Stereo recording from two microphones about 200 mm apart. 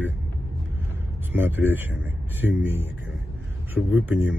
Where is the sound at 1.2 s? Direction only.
10° right (ahead or behind).